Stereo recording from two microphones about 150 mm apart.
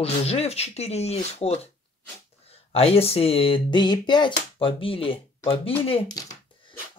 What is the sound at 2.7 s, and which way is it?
Speech, 40° left (ahead or behind).